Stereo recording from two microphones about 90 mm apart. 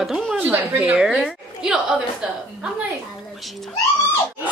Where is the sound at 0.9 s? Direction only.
5° right (ahead or behind).